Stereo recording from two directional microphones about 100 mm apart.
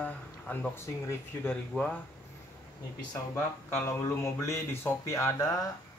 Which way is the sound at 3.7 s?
25° left (ahead or behind).